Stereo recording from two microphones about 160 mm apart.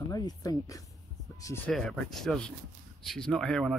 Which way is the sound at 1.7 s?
Centre (ahead or behind).